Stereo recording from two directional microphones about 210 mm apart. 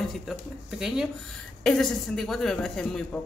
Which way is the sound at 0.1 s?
Centre (ahead or behind).